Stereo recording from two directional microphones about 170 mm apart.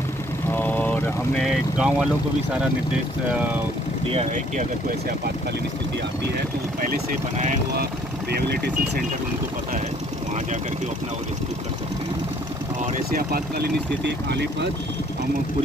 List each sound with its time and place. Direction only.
0.5 s vehicle: 10° left (ahead or behind)
1.4 s speech: 5° right (ahead or behind)
3.3 s speech: 10° right (ahead or behind)
6.8 s speech: 55° right (ahead or behind)
8.3 s speech: 70° right (ahead or behind)
13.1 s speech: 65° right (ahead or behind); by 14.7 s 90° right